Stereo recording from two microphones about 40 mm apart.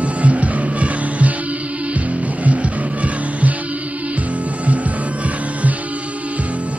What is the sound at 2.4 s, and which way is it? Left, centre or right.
Music, right.